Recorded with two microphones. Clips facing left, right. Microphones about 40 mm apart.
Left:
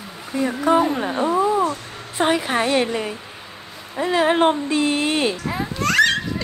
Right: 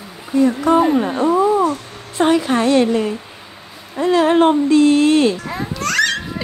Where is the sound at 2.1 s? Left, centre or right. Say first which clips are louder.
Right 4 dB; centre.